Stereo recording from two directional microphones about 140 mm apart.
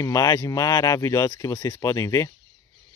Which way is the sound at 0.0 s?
25° left (ahead or behind).